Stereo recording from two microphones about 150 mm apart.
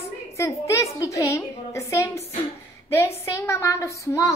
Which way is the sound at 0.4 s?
20° left (ahead or behind).